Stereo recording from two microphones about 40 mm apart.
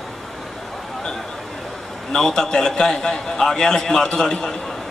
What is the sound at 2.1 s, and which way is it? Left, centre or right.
A man's voice, centre.